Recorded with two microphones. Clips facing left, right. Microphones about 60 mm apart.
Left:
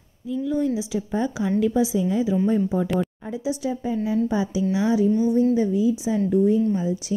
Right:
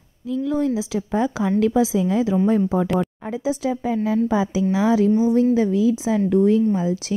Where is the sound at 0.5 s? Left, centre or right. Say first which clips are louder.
Right 2 dB; right.